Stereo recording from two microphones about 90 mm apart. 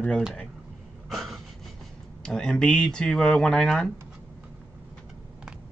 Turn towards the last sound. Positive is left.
turn(degrees=5)  # may be behind; listen again after turning